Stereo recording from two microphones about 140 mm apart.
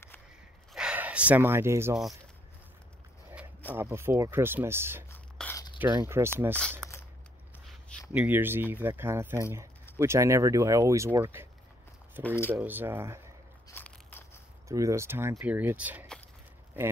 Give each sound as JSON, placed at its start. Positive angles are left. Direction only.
{"t": 0.7, "sound": "speech", "side_deg": -10}
{"t": 3.7, "sound": "speech", "side_deg": -20}
{"t": 5.4, "sound": "biting", "side_deg": 5}
{"t": 6.0, "sound": "speech", "side_deg": -20}
{"t": 8.1, "sound": "speech", "side_deg": -10}
{"t": 12.2, "sound": "speech", "side_deg": 15}
{"t": 12.5, "sound": "speech", "side_deg": -15}
{"t": 13.7, "sound": "biting", "side_deg": 15}
{"t": 14.7, "sound": "speech", "side_deg": -20}